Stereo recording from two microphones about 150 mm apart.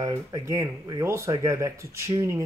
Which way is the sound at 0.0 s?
25° right (ahead or behind).